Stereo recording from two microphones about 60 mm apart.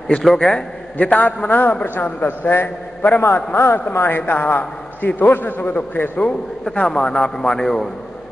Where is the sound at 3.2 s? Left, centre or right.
Left; by 7.9 s centre.